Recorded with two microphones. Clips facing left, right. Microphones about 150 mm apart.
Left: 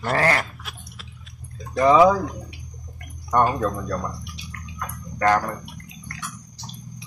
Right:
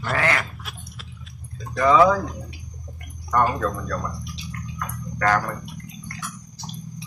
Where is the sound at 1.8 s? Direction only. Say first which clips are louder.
Left 2 dB; 25° left (ahead or behind).